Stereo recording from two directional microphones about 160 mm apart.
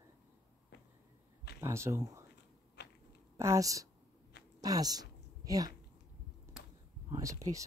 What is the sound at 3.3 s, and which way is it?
A woman's voice, 15° right (ahead or behind).